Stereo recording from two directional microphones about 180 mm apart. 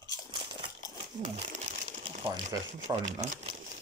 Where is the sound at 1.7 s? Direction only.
40° right (ahead or behind).